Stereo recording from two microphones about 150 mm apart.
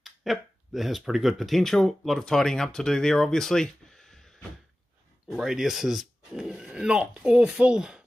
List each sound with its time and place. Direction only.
0.0 s speech: centre (ahead or behind)